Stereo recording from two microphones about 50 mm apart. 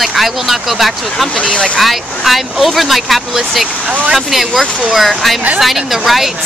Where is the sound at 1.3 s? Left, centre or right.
Left.